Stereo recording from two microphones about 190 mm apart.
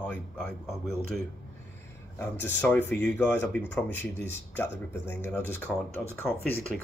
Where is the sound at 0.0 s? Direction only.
10° left (ahead or behind).